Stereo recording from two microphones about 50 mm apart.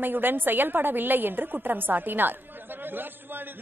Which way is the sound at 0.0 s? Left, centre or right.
Right.